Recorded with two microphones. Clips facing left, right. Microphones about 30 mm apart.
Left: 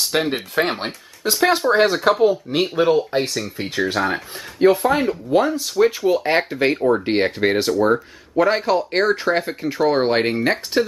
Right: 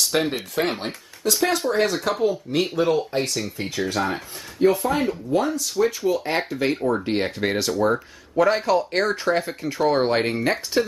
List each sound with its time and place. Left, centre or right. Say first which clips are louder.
0.1 s speech: left 2 dB; centre
0.6 s speech: left 3 dB; left
4.8 s speech: left 4 dB; centre